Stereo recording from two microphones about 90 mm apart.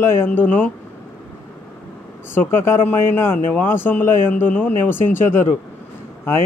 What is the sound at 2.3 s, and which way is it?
Mantra, 25° left (ahead or behind).